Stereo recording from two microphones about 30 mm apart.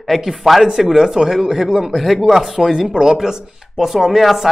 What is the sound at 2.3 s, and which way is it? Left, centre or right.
A man's voice, centre.